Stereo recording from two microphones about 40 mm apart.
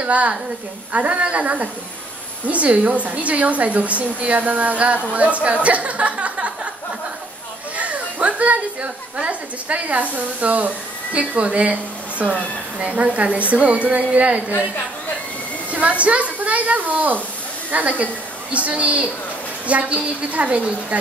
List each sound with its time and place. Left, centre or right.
0.0 s a woman's voice: right
7.7 s children playing: right
9.3 s a woman's voice: right
15.7 s a woman's voice: right